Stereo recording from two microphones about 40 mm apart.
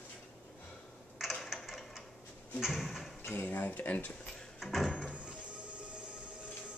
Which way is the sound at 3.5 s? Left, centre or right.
Left.